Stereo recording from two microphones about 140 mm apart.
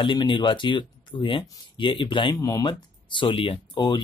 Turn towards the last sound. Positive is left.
turn(degrees=30)  # may be behind; listen again after turning